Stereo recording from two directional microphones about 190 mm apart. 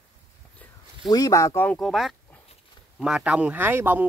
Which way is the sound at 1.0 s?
20° left (ahead or behind).